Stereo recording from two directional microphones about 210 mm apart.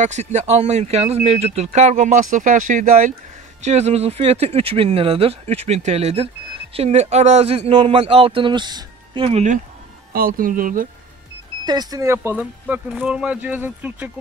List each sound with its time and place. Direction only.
0.0 s speech: 35° right (ahead or behind)
10.1 s speech: 45° right (ahead or behind)
11.6 s speech: 20° right (ahead or behind)